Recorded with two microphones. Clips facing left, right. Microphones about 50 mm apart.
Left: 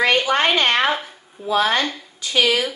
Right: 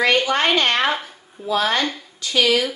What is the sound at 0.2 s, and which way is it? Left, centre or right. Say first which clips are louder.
Speech: left 1 dB; centre.